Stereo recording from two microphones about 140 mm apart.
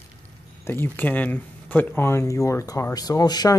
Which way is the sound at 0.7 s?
15° left (ahead or behind).